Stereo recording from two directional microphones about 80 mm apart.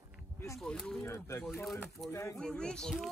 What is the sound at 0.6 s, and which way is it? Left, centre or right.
Speech, centre.